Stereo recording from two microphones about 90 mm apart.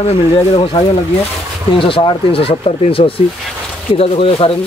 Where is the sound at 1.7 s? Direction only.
75° left (ahead or behind).